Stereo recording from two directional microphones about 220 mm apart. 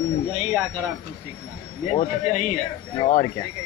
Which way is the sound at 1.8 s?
35° left (ahead or behind).